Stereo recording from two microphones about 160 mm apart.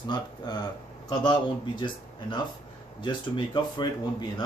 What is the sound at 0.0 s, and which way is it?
Speech, 25° left (ahead or behind).